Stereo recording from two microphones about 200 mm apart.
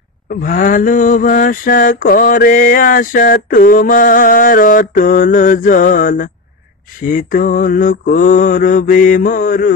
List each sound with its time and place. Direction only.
0.4 s mantra: 45° left (ahead or behind)